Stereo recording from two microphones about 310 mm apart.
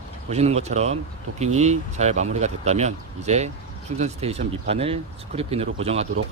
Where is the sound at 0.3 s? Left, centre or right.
Right.